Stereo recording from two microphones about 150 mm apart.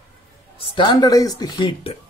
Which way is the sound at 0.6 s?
35° left (ahead or behind).